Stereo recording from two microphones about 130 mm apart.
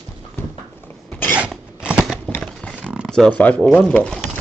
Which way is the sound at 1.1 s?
15° left (ahead or behind).